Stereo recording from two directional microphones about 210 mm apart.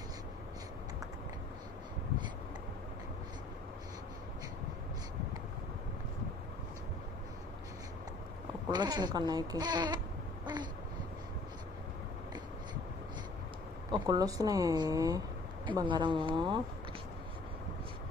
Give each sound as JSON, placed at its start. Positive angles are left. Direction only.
{"t": 8.6, "sound": "speech", "side_deg": -20}
{"t": 10.4, "sound": "babbling", "side_deg": -20}
{"t": 13.9, "sound": "speech", "side_deg": -20}